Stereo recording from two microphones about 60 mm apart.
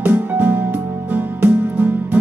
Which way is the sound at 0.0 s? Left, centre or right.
Right.